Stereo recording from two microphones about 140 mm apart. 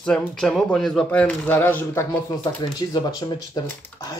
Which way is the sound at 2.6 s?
30° left (ahead or behind).